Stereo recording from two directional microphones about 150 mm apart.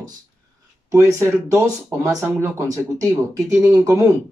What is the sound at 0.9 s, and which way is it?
Speech, 20° right (ahead or behind).